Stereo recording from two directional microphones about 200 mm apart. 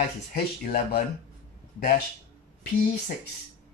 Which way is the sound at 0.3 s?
40° left (ahead or behind).